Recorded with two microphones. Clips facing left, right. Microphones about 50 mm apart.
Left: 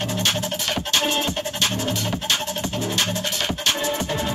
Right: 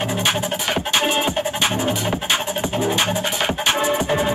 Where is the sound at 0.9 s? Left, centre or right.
Centre.